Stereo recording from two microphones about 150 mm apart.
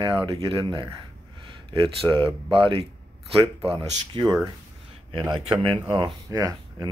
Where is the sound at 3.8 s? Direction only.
25° right (ahead or behind).